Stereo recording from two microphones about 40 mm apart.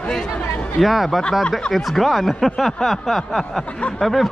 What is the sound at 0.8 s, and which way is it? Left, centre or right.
Speech, centre.